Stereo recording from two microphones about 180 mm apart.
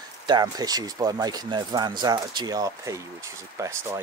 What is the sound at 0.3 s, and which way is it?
Speech, 20° right (ahead or behind).